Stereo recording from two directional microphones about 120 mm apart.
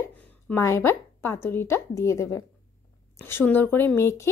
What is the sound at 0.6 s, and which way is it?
Speech, 25° left (ahead or behind).